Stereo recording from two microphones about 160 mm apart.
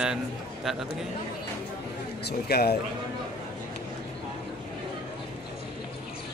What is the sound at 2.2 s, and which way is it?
Speech, 85° left.